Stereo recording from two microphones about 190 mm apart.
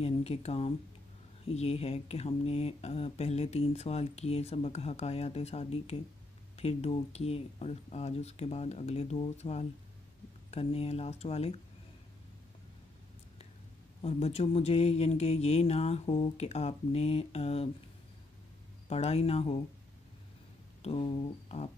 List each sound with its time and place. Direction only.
0.0 s speech: 35° left (ahead or behind)
14.0 s speech: 35° left (ahead or behind)
18.9 s speech: 35° left (ahead or behind)
20.8 s speech: 30° left (ahead or behind)